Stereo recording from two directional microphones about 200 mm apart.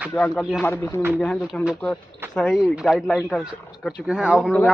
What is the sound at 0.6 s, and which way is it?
Speech, 10° left (ahead or behind).